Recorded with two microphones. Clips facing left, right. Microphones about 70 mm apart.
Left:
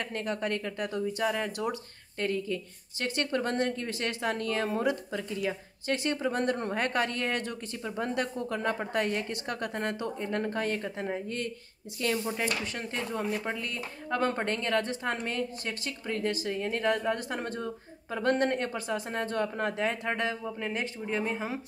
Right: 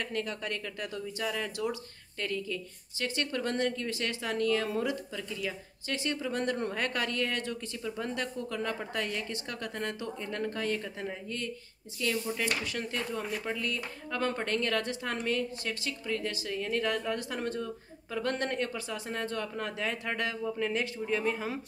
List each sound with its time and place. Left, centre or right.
0.0 s speech: left
9.3 s speech: left
10.1 s speech: left